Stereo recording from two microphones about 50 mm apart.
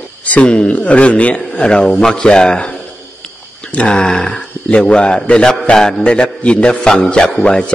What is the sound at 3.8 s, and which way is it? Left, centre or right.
Speech, centre.